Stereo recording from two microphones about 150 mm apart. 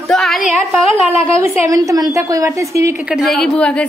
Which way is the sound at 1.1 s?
40° left (ahead or behind).